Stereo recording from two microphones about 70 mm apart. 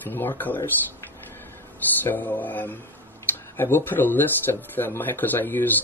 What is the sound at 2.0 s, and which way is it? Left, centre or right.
Speech, left.